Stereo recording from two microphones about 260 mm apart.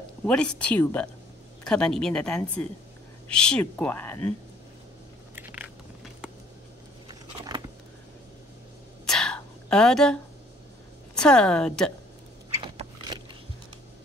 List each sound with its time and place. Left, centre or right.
0.3 s a woman's voice: centre
5.3 s biting: centre
7.1 s a sound: centre
9.0 s whispering: centre
11.1 s a woman's voice: centre
12.6 s biting: centre